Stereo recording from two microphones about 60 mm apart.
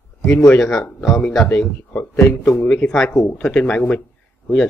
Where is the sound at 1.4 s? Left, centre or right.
Left.